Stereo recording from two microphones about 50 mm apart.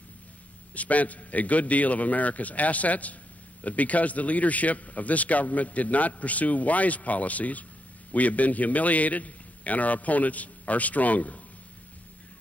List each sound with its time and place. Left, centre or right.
0.7 s a man's voice: left